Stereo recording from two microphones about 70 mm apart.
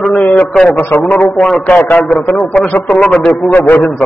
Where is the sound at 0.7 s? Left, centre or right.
Left.